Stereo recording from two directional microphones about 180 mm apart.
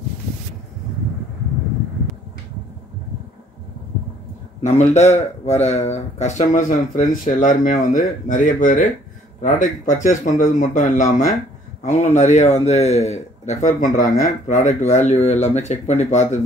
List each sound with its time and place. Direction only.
4.6 s a man's voice: 40° left (ahead or behind)